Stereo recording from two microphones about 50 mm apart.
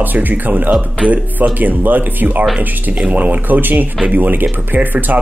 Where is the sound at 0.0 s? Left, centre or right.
Right.